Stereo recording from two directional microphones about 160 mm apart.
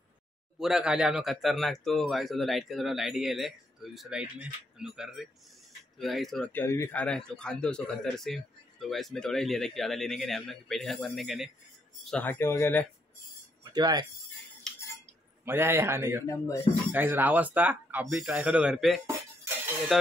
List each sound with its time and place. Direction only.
0.6 s speech: 5° right (ahead or behind)
13.7 s speech: 25° right (ahead or behind)
14.7 s cutlery: 5° left (ahead or behind)
15.4 s speech: 15° right (ahead or behind)
16.3 s speech: 20° left (ahead or behind)
16.9 s speech: 10° right (ahead or behind)
19.0 s dishes: 15° right (ahead or behind)
19.9 s speech: centre (ahead or behind)